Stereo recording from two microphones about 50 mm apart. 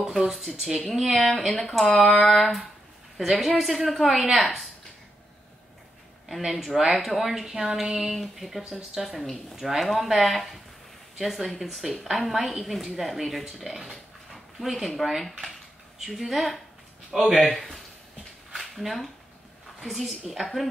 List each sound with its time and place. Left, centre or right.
0.0 s a woman's voice: centre
6.2 s a woman's voice: centre
8.6 s speech: centre
9.6 s a woman's voice: centre
17.6 s a sound: centre
19.8 s a woman's voice: centre